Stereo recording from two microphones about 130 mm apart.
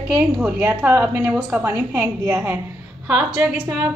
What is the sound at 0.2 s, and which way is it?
A woman's voice, 15° right (ahead or behind).